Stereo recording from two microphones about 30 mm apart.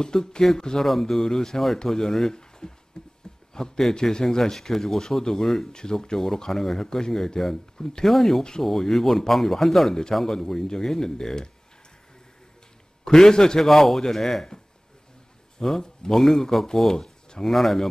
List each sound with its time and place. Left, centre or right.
0.0 s speech: left
0.8 s speech: centre
2.6 s a sound: left
3.5 s speech: centre
5.7 s speech: left
8.0 s speech: centre
13.0 s speech: left
13.6 s speech: centre
15.8 s speech: left
16.2 s speech: centre